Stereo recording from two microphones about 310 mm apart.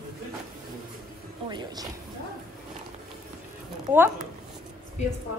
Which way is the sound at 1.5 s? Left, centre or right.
Centre.